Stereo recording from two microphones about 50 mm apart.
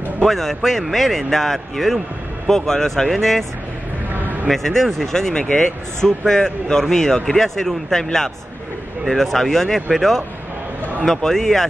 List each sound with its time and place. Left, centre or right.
0.3 s speech: centre
4.1 s a sound: right
4.5 s speech: centre